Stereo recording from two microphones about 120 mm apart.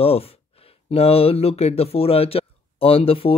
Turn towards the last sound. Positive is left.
turn(degrees=50)  # may be behind; listen again after turning